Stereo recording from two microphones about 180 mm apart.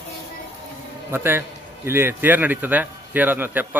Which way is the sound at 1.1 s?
10° right (ahead or behind).